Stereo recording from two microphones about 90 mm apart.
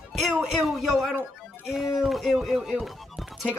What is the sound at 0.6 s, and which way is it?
Speech, centre (ahead or behind).